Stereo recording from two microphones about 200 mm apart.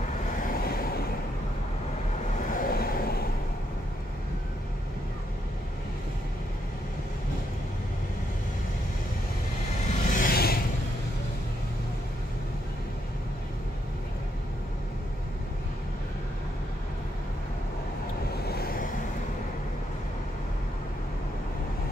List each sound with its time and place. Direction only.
0.6 s vehicle: 50° left (ahead or behind)
2.5 s vehicle: 45° left (ahead or behind)
10.0 s vehicle: 45° left (ahead or behind)
18.3 s vehicle: 50° left (ahead or behind)